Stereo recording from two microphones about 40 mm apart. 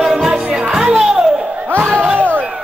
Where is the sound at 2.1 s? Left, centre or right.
Right.